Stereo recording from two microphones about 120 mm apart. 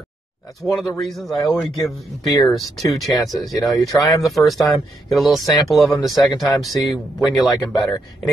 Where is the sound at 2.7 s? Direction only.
Centre (ahead or behind).